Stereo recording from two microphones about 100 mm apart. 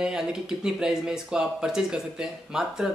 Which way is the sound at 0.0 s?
5° right (ahead or behind).